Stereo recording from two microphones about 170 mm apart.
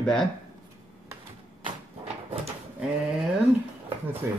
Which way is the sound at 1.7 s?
35° right (ahead or behind).